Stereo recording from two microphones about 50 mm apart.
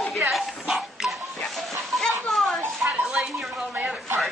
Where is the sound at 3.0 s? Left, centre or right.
Centre.